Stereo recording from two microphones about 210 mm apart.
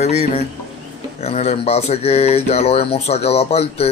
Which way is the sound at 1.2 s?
30° left (ahead or behind).